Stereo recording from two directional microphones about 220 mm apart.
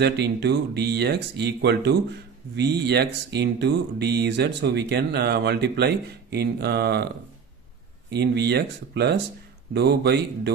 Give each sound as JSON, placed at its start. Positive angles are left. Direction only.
{"t": 0.0, "sound": "speech", "side_deg": -50}
{"t": 8.1, "sound": "speech", "side_deg": -50}